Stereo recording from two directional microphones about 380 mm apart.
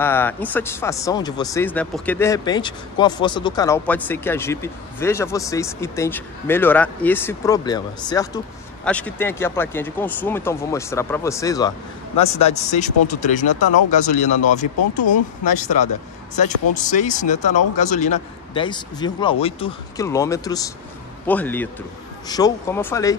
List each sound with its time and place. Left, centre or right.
0.0 s speech: centre